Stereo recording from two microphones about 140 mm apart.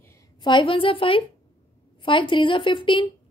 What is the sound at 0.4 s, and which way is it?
A woman's voice, 35° left (ahead or behind).